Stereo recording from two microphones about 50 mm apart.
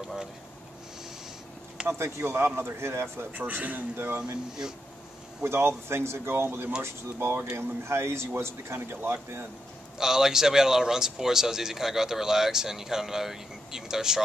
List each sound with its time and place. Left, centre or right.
1.9 s speech: right
2.3 s a man's voice: right
3.3 s a man's voice: right
3.9 s a man's voice: right
5.4 s a man's voice: right
7.5 s speech: right
9.9 s speech: centre